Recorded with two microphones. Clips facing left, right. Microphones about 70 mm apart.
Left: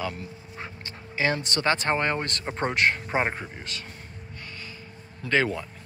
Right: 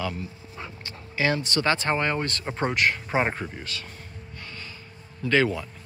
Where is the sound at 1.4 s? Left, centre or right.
Left.